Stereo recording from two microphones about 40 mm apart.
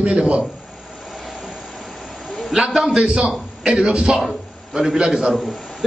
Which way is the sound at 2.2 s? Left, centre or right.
Centre.